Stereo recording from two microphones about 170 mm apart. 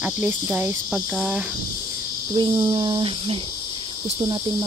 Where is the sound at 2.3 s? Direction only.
25° right (ahead or behind).